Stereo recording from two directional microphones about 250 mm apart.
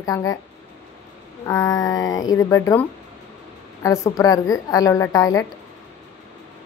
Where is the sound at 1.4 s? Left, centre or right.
Centre.